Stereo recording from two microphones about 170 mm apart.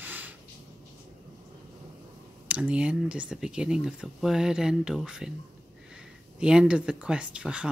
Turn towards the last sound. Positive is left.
turn(degrees=-5)  # may be behind; listen again after turning